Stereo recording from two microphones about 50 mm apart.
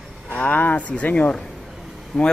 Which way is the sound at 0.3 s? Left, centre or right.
Left.